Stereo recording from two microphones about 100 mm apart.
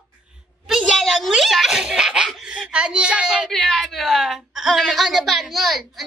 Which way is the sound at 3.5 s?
5° left (ahead or behind).